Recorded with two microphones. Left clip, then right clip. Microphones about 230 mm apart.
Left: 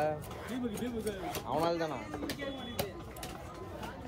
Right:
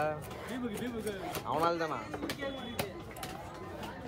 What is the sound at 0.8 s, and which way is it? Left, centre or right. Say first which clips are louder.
Speech: even; right.